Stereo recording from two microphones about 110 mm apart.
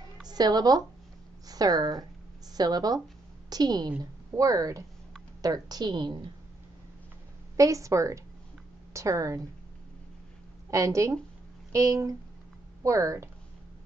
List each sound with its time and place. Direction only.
0.3 s a woman's voice: 35° right (ahead or behind)
7.5 s a woman's voice: 30° right (ahead or behind)
10.7 s a woman's voice: 30° right (ahead or behind)